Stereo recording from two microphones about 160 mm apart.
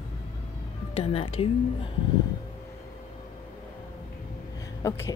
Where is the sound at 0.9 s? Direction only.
40° left (ahead or behind).